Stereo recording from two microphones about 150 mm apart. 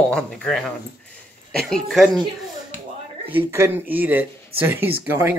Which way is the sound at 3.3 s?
15° right (ahead or behind).